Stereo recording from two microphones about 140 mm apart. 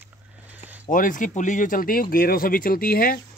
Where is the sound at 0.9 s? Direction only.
70° left (ahead or behind).